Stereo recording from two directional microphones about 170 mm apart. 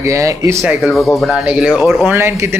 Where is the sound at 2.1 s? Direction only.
15° right (ahead or behind).